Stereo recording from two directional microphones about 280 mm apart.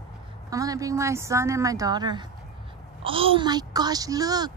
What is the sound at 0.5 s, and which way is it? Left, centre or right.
A woman's voice, centre.